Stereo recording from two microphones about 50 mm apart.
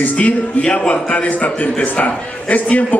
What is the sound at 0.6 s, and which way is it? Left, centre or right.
A man's voice, left.